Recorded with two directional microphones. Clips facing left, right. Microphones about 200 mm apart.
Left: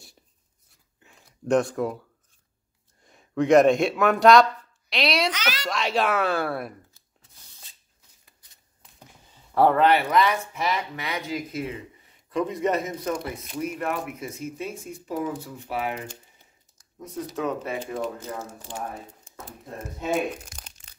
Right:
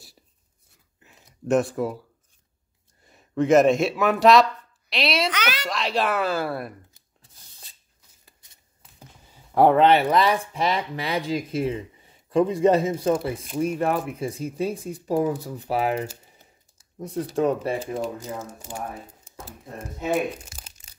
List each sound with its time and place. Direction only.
0.9 s a sound: 5° right (ahead or behind)
1.5 s speech: 5° right (ahead or behind)
3.1 s speech: centre (ahead or behind)
5.3 s a woman's voice: 60° right (ahead or behind)
5.7 s speech: centre (ahead or behind)
9.3 s speech: 15° right (ahead or behind); by 17.7 s 30° right (ahead or behind)
20.0 s a sound: 5° right (ahead or behind)